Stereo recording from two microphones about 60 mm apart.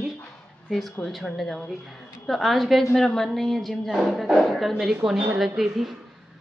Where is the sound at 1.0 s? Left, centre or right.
Centre.